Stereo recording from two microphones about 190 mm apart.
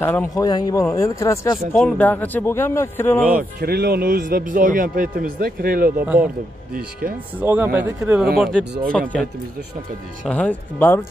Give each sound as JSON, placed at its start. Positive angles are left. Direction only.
{"t": 0.0, "sound": "speech", "side_deg": 10}
{"t": 1.7, "sound": "speech", "side_deg": 5}
{"t": 3.5, "sound": "speech", "side_deg": -55}
{"t": 7.3, "sound": "speech", "side_deg": -10}